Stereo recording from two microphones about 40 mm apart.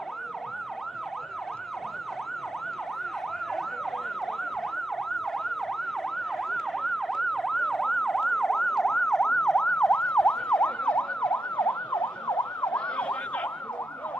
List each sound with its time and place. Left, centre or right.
6.8 s emergency vehicle: centre; by 11.4 s left
11.5 s emergency vehicle: left